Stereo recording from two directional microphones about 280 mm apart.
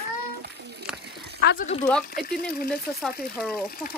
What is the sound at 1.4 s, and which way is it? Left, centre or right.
Speech, left.